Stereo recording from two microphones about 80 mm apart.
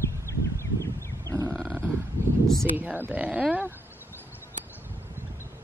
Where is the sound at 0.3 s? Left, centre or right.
Left.